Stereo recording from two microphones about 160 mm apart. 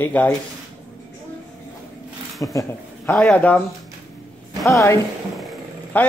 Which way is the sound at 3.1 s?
5° left (ahead or behind).